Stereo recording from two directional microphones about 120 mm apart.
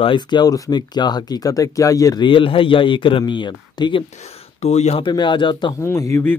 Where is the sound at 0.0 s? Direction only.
40° left (ahead or behind).